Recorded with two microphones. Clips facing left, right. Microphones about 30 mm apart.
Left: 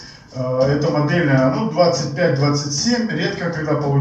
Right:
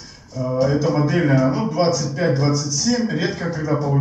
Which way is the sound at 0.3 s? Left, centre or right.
Left.